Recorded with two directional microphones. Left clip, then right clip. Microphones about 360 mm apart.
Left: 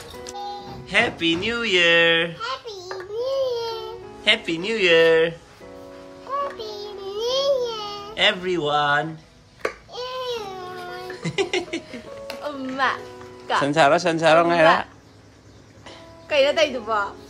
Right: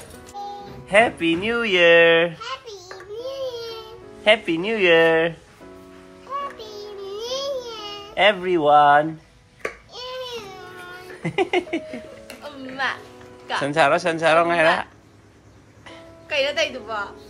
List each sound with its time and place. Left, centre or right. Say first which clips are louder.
0.8 s speech: right 3 dB; centre
2.4 s a sound: left 3 dB; centre
4.2 s speech: right 3 dB; centre
6.6 s a sound: left 2 dB; centre
8.2 s speech: right 3 dB; centre
9.6 s babbling: left 3 dB; centre
11.2 s speech: right 3 dB; centre
12.4 s a child's voice: left 3 dB; left
13.6 s speech: left 1 dB; centre
16.3 s a woman's voice: left 3 dB; left